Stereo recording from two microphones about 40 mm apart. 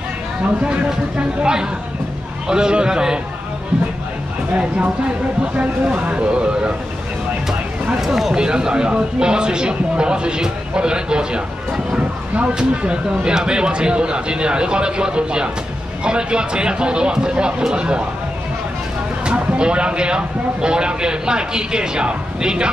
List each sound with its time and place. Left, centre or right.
1.4 s speech: right
4.6 s speech: right
8.0 s speech: centre
8.4 s speech: right
12.5 s speech: right
19.2 s speech: right